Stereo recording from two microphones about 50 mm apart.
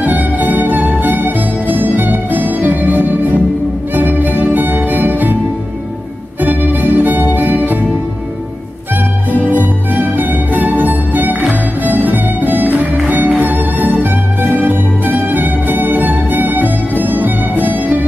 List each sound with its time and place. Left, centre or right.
0.0 s music: right
6.4 s music: right
9.5 s music: right